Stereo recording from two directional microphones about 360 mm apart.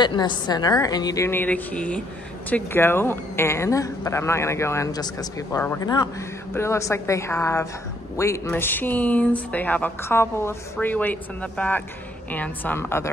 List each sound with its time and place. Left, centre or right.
0.0 s speech: centre